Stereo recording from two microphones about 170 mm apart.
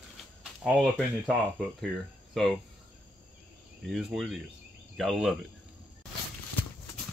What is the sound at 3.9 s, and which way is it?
Speech, centre (ahead or behind).